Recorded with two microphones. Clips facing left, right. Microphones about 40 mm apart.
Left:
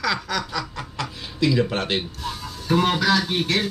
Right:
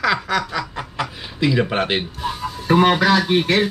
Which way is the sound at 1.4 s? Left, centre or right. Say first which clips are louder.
Right 3 dB; right.